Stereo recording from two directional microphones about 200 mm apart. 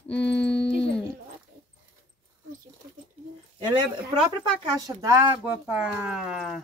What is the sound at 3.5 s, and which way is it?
Speech, 20° right (ahead or behind).